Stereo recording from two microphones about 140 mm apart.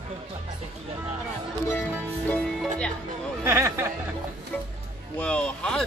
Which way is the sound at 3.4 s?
20° right (ahead or behind).